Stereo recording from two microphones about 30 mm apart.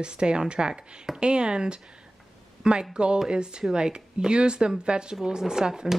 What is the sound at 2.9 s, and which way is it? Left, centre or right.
Speech, right.